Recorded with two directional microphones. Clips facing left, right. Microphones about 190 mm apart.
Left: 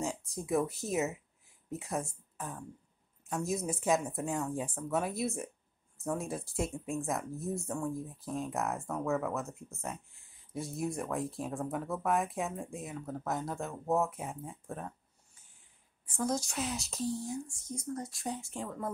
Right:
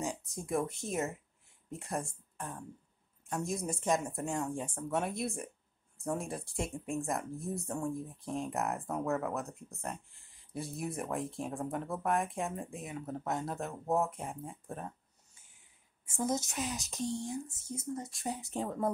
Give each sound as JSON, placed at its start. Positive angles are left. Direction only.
{"t": 0.0, "sound": "speech", "side_deg": 0}
{"t": 16.2, "sound": "speech", "side_deg": -20}
{"t": 16.4, "sound": "speech", "side_deg": 0}